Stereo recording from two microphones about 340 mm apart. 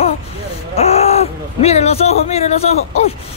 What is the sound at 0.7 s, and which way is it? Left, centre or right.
Speech, centre.